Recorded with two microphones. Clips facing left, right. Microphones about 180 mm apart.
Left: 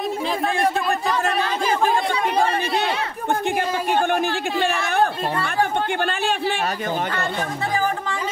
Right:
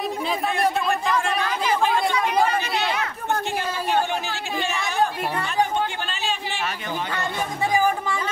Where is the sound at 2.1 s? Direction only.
30° left (ahead or behind).